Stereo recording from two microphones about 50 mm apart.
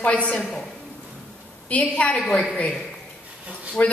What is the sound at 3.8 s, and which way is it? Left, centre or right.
Speech, left.